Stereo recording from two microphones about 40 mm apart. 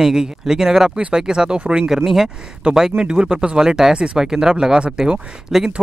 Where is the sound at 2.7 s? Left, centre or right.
Centre.